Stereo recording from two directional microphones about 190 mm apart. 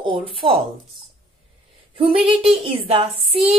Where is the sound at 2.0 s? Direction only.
30° right (ahead or behind).